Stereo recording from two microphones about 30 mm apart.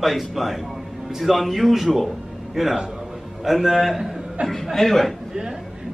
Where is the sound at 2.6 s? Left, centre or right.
Centre.